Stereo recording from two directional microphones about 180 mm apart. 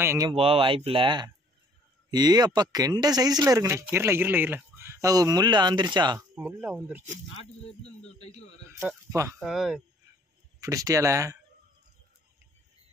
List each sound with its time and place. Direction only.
0.0 s speech: 15° right (ahead or behind)
0.3 s speech: 30° right (ahead or behind)
6.3 s speech: 10° right (ahead or behind)
8.6 s speech: 15° right (ahead or behind)
9.4 s speech: centre (ahead or behind)
10.6 s speech: 20° right (ahead or behind)